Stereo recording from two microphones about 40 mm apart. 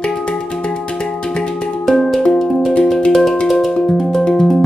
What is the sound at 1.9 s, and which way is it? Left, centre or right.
Music, centre.